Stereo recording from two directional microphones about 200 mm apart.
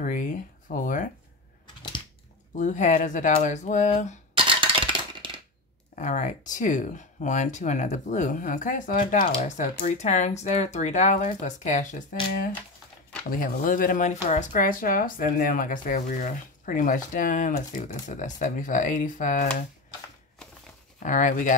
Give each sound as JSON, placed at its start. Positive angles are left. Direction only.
{"t": 0.0, "sound": "speech", "side_deg": 40}
{"t": 2.5, "sound": "speech", "side_deg": 40}
{"t": 4.4, "sound": "a sound", "side_deg": -25}
{"t": 5.9, "sound": "speech", "side_deg": 35}
{"t": 13.3, "sound": "speech", "side_deg": 45}
{"t": 21.0, "sound": "speech", "side_deg": 40}